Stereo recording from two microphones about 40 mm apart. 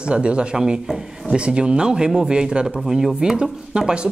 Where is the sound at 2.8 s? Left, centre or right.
Centre.